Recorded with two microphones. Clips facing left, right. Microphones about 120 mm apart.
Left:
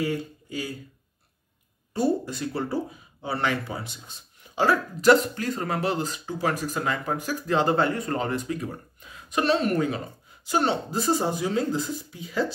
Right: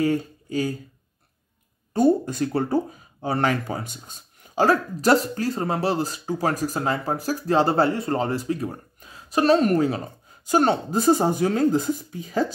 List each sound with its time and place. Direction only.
0.0 s speech: 40° right (ahead or behind)
2.0 s speech: 50° right (ahead or behind)